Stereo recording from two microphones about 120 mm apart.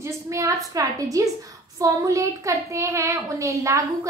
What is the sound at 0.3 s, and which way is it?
A woman's voice, 25° right (ahead or behind).